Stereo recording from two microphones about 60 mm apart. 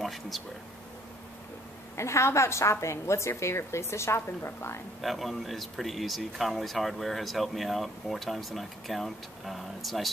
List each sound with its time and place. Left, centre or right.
0.0 s speech: centre
2.0 s a woman's voice: left
5.0 s speech: centre